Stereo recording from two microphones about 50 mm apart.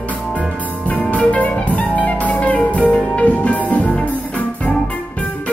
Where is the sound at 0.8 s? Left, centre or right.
Left.